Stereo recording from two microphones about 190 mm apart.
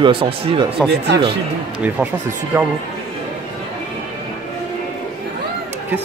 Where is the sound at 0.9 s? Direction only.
65° right (ahead or behind).